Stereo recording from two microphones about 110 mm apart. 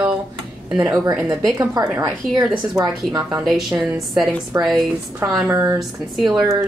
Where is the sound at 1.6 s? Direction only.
30° right (ahead or behind).